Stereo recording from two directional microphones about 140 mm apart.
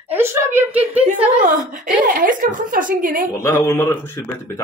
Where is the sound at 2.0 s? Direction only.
80° right.